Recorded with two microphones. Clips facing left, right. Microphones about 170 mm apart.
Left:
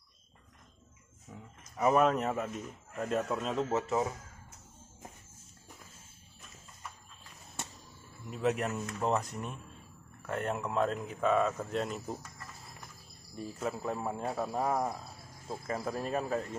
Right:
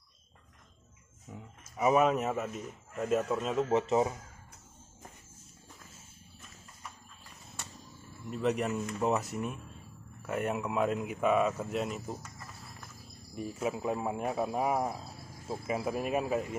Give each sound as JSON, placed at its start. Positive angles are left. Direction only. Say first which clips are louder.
{"t": 1.3, "sound": "speech", "louder": "right 2 dB", "side_deg": -5}
{"t": 3.7, "sound": "speech", "louder": "right 5 dB", "side_deg": -20}
{"t": 8.3, "sound": "speech", "louder": "right 1 dB", "side_deg": 0}
{"t": 13.4, "sound": "speech", "louder": "right 3 dB", "side_deg": -10}